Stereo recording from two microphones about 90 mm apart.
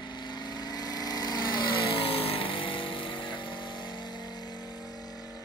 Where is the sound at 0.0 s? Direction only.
55° left (ahead or behind).